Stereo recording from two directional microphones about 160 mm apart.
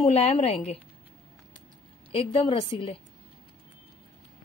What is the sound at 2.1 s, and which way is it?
Speech, 35° left (ahead or behind).